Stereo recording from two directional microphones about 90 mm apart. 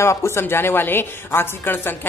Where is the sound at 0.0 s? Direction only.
30° left (ahead or behind).